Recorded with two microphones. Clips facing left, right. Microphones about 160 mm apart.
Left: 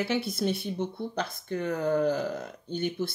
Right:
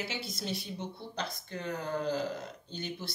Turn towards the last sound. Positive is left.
turn(degrees=55)  # may be behind; listen again after turning